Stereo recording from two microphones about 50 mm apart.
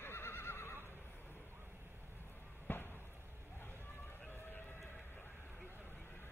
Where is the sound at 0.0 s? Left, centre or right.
Left.